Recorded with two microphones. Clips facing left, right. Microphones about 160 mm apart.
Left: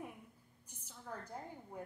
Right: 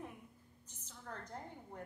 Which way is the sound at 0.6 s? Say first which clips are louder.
Left 1 dB; 10° left (ahead or behind).